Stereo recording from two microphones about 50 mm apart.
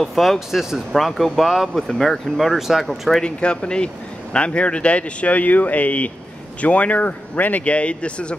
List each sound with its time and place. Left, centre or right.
0.0 s speech: centre
3.2 s speech: centre